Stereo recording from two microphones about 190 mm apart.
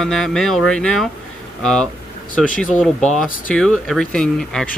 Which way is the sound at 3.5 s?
Centre (ahead or behind).